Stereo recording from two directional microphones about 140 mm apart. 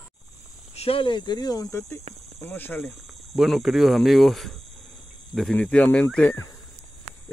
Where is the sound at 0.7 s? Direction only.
40° left (ahead or behind); by 2.8 s 15° left (ahead or behind).